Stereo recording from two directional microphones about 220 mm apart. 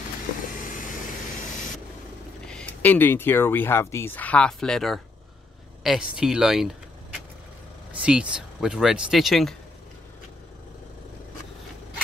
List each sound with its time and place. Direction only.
0.6 s vehicle: 35° left (ahead or behind)
2.4 s speech: 5° left (ahead or behind)
7.9 s speech: 5° right (ahead or behind)